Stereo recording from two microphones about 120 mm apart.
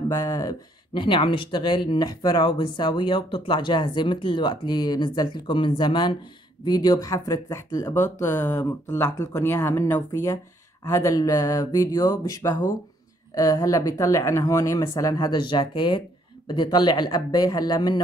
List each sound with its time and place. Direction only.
0.1 s speech: 25° left (ahead or behind)
1.0 s speech: 45° left (ahead or behind)